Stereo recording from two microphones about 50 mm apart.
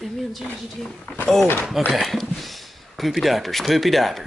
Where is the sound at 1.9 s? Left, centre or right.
Centre.